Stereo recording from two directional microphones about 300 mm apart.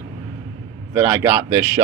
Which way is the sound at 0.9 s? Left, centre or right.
Centre.